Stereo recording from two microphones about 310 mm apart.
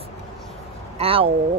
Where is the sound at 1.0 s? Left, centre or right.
Centre.